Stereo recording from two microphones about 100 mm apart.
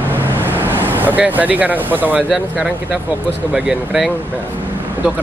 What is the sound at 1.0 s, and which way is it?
Speech, 15° right (ahead or behind).